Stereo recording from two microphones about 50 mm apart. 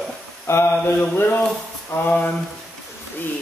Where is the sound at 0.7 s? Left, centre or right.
Left.